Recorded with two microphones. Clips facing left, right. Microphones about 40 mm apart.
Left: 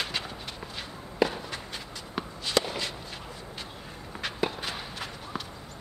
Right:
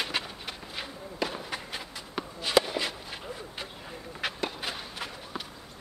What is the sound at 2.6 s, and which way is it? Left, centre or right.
Walk, centre.